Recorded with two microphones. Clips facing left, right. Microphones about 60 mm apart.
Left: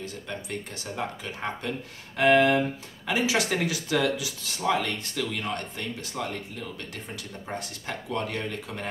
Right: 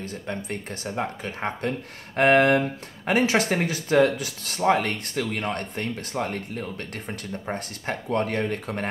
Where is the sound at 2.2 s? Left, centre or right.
Right.